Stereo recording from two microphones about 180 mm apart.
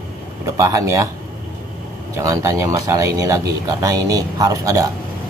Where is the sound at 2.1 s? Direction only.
15° right (ahead or behind).